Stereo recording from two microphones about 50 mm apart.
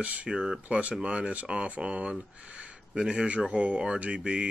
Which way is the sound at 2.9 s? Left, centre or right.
Centre.